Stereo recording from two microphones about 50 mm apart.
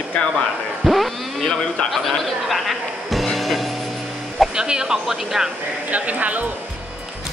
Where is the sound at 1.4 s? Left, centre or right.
Centre.